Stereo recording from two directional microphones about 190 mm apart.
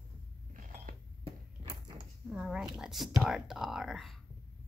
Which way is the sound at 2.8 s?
Centre (ahead or behind).